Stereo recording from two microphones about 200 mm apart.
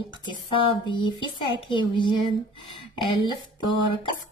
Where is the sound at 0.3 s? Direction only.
25° left (ahead or behind).